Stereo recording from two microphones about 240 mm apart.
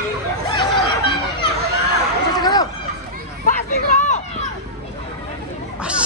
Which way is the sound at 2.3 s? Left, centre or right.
Centre.